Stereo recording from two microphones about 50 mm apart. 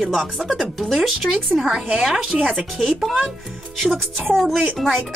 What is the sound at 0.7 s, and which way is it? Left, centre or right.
Speech, centre.